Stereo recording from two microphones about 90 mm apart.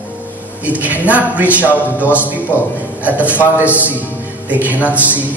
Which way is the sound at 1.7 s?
20° left (ahead or behind).